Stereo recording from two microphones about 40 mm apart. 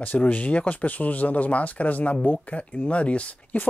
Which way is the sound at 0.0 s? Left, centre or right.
Left.